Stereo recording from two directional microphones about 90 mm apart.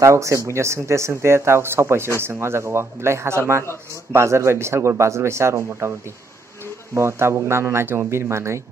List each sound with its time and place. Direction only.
0.0 s speech: 35° right (ahead or behind)
6.9 s speech: 30° right (ahead or behind)